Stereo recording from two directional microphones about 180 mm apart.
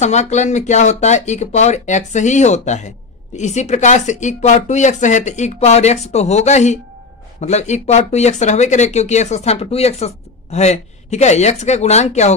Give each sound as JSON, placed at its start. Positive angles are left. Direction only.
{"t": 0.0, "sound": "speech", "side_deg": 40}